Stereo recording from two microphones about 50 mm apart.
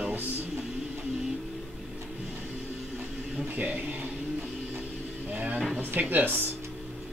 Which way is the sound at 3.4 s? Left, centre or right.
Right.